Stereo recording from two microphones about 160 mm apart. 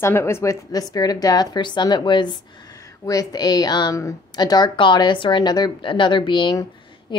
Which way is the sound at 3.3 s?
25° left (ahead or behind).